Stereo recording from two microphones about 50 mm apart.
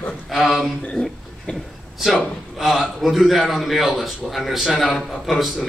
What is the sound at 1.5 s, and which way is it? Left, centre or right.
Speech, left.